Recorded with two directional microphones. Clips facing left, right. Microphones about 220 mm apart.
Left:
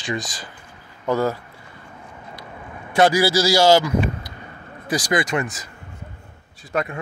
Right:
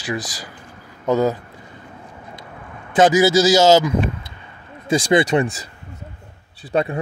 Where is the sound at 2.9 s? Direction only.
20° right (ahead or behind).